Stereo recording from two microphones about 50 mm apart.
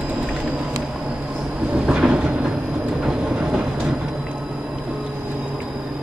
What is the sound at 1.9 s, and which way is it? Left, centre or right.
Train, centre.